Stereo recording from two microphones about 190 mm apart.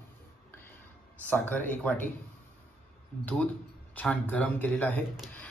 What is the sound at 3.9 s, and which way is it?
A man's voice, 10° left (ahead or behind).